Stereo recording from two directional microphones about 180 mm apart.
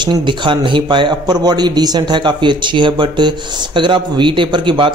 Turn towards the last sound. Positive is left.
turn(degrees=-25)  # may be behind; listen again after turning